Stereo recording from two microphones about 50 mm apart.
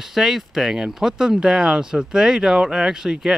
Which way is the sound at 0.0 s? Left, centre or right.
Centre.